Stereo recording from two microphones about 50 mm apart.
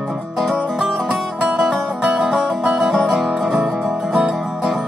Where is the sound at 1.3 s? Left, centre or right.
Right; by 3.3 s centre.